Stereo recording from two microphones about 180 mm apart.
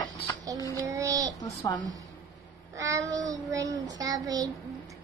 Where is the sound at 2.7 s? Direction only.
20° right (ahead or behind).